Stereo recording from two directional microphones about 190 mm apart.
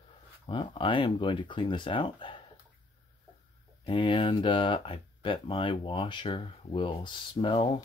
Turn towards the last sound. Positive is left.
turn(degrees=25)  # may be behind; listen again after turning